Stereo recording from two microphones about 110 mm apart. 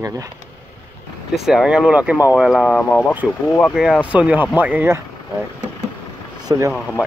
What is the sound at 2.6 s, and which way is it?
Speech, 15° left (ahead or behind).